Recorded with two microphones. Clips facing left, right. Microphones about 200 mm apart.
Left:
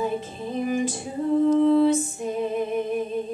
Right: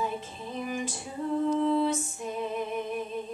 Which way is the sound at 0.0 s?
35° left (ahead or behind).